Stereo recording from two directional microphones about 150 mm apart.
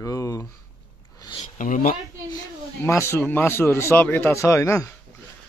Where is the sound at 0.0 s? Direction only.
20° left (ahead or behind).